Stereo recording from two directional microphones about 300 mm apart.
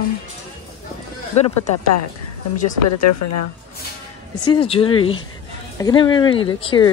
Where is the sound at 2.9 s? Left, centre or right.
Left.